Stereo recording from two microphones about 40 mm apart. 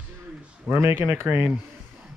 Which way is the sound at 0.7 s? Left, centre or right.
Centre.